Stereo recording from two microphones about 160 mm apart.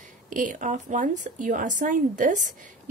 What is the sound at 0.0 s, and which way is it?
A woman's voice, 55° right (ahead or behind).